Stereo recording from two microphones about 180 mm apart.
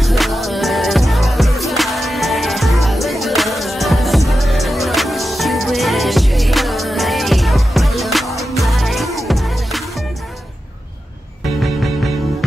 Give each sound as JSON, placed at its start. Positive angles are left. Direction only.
{"t": 0.0, "sound": "music", "side_deg": 0}